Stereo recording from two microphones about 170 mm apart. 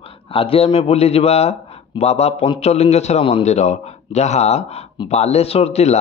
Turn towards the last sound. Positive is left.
turn(degrees=40)  # may be behind; listen again after turning